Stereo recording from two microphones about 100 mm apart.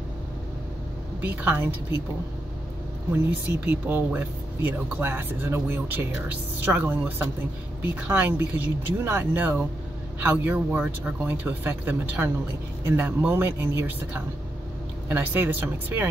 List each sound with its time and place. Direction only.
1.2 s speech: 20° right (ahead or behind)
3.3 s speech: 20° right (ahead or behind)